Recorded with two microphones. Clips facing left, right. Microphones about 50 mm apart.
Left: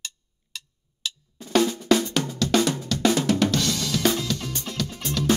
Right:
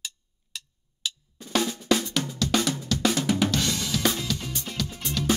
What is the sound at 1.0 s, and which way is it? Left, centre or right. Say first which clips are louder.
Drum: left 1 dB; centre.